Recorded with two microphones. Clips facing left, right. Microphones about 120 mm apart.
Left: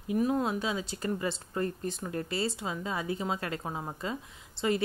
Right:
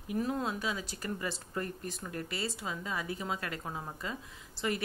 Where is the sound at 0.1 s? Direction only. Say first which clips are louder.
Left 5 dB; 20° left (ahead or behind).